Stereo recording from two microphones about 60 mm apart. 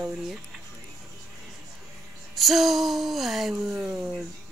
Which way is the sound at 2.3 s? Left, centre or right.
Centre.